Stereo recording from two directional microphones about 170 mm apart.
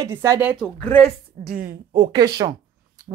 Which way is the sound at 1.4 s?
60° right (ahead or behind).